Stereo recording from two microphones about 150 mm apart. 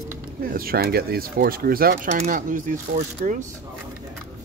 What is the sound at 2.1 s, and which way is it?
Speech, 55° right (ahead or behind).